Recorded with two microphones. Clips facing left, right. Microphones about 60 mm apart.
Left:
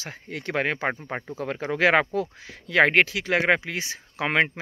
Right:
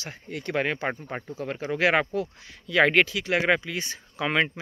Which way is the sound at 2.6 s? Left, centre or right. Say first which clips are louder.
Left 1 dB; left.